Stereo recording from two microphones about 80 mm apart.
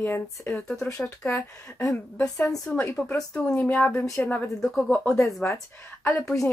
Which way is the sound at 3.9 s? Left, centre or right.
Centre.